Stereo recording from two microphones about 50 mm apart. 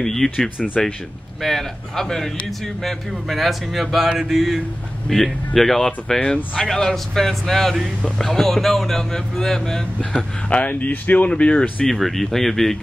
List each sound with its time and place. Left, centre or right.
0.0 s speech: centre
10.5 s speech: left
11.8 s speech: centre